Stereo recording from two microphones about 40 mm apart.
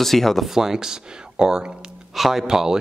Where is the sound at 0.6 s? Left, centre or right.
Centre.